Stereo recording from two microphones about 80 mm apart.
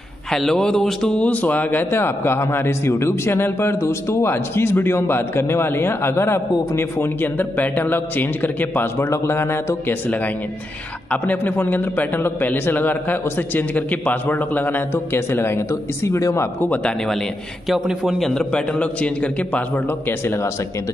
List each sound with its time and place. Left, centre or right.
0.3 s a man's voice: centre; by 8.8 s left
8.9 s a man's voice: left
16.6 s a man's voice: left
18.0 s a man's voice: centre